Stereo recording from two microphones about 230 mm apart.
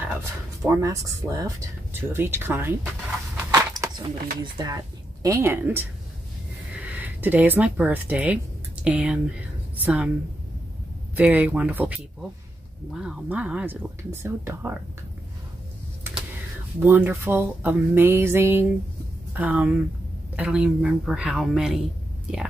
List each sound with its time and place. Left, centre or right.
0.0 s speech: centre
3.5 s a sound: centre
4.4 s speech: centre
11.1 s speech: centre
16.8 s speech: centre